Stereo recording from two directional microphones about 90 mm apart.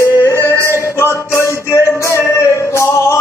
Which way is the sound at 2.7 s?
30° left (ahead or behind).